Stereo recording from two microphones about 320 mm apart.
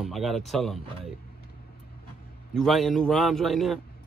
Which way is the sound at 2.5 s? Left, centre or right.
Centre.